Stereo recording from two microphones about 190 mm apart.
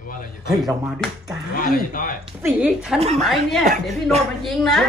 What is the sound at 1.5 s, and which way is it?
Speech, 45° left (ahead or behind).